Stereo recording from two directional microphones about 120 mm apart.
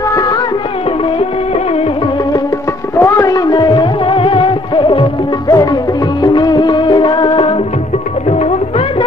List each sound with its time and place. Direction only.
0.1 s music: 35° left (ahead or behind)
3.0 s music: 25° left (ahead or behind); by 5.0 s 45° left (ahead or behind)
5.5 s music: 30° left (ahead or behind)
8.3 s music: 60° left (ahead or behind)